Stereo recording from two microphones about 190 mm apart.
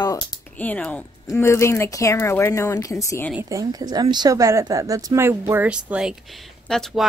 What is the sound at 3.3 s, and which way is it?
Speech, 15° right (ahead or behind).